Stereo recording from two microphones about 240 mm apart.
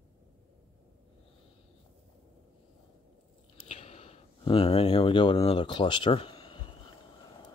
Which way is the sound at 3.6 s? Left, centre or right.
Left.